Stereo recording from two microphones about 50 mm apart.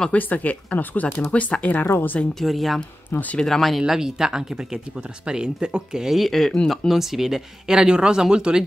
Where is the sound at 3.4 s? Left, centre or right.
Centre.